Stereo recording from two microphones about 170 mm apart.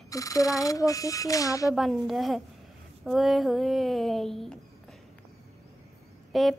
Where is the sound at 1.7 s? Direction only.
Centre (ahead or behind).